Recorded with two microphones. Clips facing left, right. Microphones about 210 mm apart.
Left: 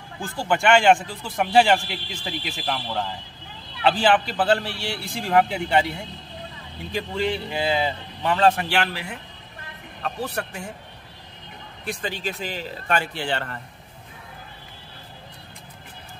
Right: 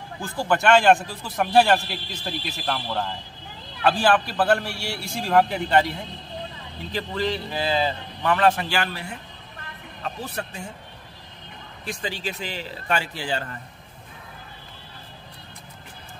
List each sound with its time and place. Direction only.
0.4 s a man's voice: centre (ahead or behind)
3.8 s a man's voice: 20° left (ahead or behind)
4.4 s a man's voice: 5° left (ahead or behind)
5.5 s speech: 15° left (ahead or behind)
6.9 s a man's voice: 15° left (ahead or behind)
8.6 s a man's voice: 80° left
10.0 s a man's voice: 65° left (ahead or behind)
11.8 s a man's voice: 60° left (ahead or behind)